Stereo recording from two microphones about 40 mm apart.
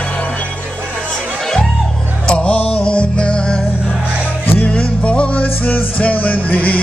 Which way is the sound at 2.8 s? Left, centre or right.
Left.